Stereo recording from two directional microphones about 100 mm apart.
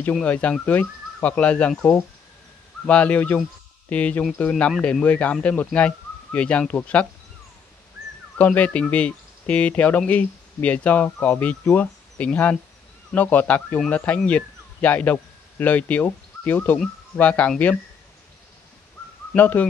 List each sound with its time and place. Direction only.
0.2 s speech: 15° left (ahead or behind)
2.9 s speech: 15° left (ahead or behind)
8.4 s speech: 15° left (ahead or behind)
19.3 s speech: 20° left (ahead or behind)